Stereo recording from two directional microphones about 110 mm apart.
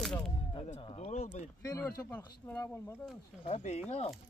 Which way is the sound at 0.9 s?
85° left.